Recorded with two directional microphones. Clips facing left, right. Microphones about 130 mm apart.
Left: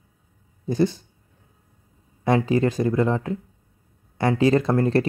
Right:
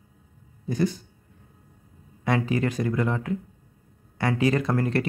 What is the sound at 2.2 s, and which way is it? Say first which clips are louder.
Speech: left 5 dB; 30° left (ahead or behind).